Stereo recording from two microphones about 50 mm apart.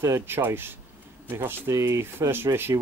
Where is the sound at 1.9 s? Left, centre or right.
Right.